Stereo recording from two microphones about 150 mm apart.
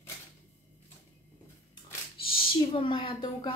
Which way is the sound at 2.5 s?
35° left (ahead or behind).